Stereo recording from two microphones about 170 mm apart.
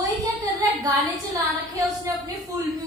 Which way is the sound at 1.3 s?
20° right (ahead or behind).